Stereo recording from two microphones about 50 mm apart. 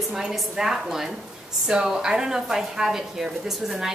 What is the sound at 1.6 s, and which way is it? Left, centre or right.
A woman's voice, centre.